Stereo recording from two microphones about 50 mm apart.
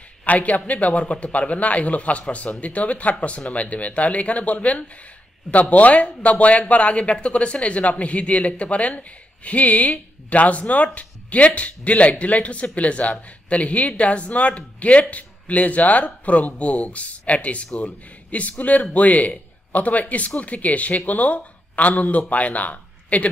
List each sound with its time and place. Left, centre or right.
0.2 s speech: left